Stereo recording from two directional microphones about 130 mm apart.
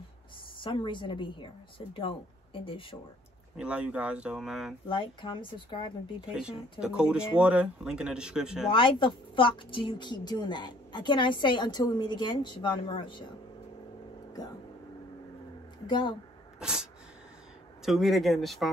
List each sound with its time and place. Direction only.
0.6 s a woman's voice: 40° left (ahead or behind)
3.5 s speech: 10° right (ahead or behind)
4.8 s a woman's voice: 40° left (ahead or behind)
6.8 s speech: 5° right (ahead or behind)
8.6 s a woman's voice: 40° left (ahead or behind)
15.9 s a woman's voice: 35° left (ahead or behind)
16.5 s sneeze: 5° right (ahead or behind)
17.8 s speech: centre (ahead or behind)